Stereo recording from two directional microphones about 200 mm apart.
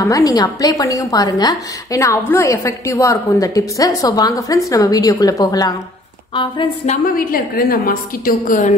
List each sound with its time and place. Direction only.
0.0 s a woman's voice: 15° left (ahead or behind)
7.2 s a woman's voice: 45° left (ahead or behind)